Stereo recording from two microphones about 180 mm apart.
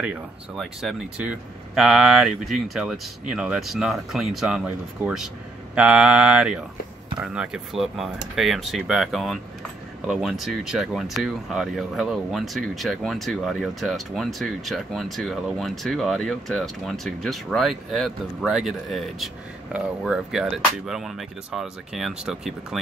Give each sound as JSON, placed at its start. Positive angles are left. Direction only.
{"t": 0.0, "sound": "speech", "side_deg": -5}